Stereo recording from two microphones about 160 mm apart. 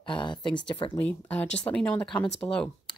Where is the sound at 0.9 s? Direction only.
10° left (ahead or behind).